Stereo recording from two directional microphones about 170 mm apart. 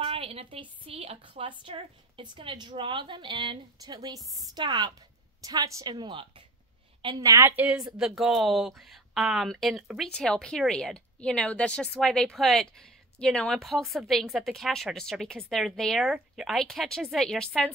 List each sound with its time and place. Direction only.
0.0 s a woman's voice: 35° right (ahead or behind); by 17.7 s 5° left (ahead or behind)